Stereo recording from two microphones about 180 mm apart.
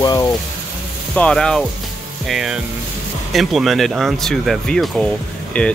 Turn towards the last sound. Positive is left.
turn(degrees=5)  # may be behind; listen again after turning